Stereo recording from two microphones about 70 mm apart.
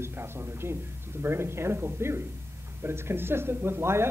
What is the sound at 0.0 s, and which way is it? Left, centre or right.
Speech, right.